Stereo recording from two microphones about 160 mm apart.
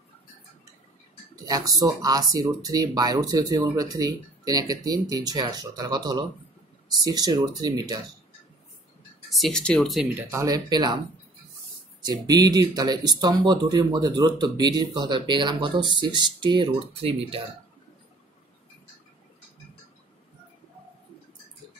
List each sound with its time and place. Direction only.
1.3 s speech: 25° right (ahead or behind)
9.3 s speech: centre (ahead or behind)
10.1 s speech: 20° right (ahead or behind)
12.0 s speech: 25° right (ahead or behind)